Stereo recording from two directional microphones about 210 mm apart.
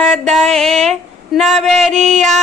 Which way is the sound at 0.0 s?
Centre (ahead or behind).